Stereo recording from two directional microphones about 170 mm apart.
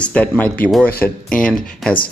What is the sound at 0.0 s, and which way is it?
Speech, 10° left (ahead or behind).